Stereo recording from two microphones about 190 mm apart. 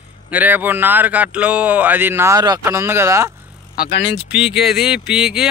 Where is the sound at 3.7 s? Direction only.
60° left (ahead or behind).